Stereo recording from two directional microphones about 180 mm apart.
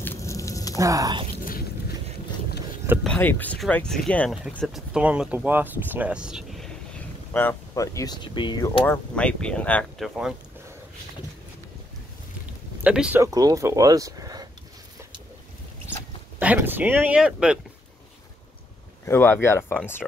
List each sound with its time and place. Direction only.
0.0 s a sound: 15° left (ahead or behind)
0.7 s speech: 20° right (ahead or behind)
1.4 s a sound: 55° left (ahead or behind)
3.0 s speech: 5° left (ahead or behind)
7.3 s speech: 15° left (ahead or behind); by 10.3 s centre (ahead or behind)
12.8 s speech: 5° right (ahead or behind)
13.2 s speech: 20° right (ahead or behind)
16.3 s speech: 10° right (ahead or behind)
19.0 s speech: 15° left (ahead or behind)